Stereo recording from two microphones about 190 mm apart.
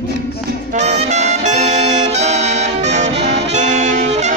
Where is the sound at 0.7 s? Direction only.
35° right (ahead or behind).